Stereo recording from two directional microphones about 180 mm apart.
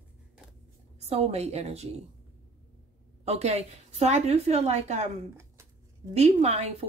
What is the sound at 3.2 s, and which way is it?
A woman's voice, 35° right (ahead or behind).